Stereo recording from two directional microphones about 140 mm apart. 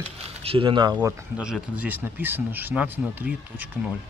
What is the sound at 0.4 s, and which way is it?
Speech, 40° right (ahead or behind).